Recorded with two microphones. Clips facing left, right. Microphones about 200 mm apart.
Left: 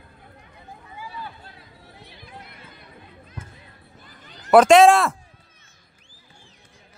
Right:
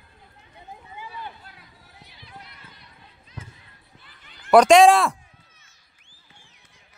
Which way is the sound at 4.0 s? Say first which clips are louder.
Left 7 dB; 45° left (ahead or behind).